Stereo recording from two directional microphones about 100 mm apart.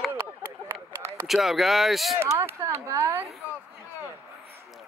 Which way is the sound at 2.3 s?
25° right (ahead or behind).